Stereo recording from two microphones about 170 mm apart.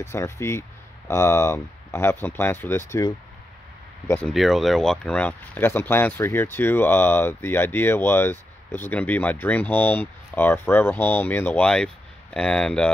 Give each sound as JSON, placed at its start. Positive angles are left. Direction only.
{"t": 0.0, "sound": "speech", "side_deg": 15}
{"t": 4.3, "sound": "speech", "side_deg": 0}